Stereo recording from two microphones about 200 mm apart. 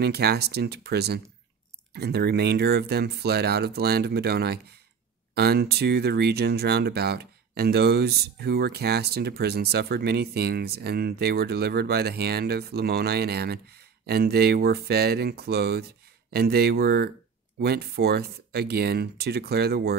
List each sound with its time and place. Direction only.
0.0 s speech: 55° right (ahead or behind)